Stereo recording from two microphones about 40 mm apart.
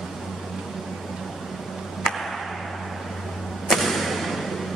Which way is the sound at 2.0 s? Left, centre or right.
Centre.